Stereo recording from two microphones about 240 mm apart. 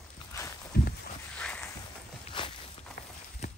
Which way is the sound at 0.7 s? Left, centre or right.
Left.